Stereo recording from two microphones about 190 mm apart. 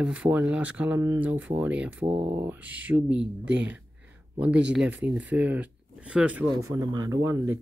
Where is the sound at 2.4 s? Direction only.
10° right (ahead or behind).